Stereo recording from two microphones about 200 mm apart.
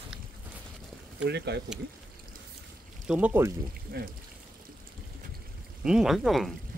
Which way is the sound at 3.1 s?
5° right (ahead or behind).